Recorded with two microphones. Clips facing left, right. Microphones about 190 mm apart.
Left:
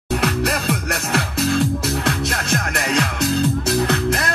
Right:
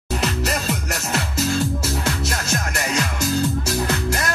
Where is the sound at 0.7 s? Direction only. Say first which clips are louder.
Left 3 dB; 60° left (ahead or behind).